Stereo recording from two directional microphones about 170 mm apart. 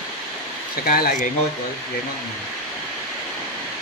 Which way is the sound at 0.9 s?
55° left (ahead or behind).